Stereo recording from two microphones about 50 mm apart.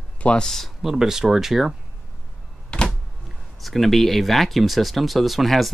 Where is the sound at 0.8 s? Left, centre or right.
Centre.